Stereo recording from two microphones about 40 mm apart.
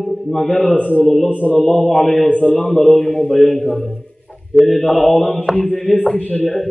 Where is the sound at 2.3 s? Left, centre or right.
Left.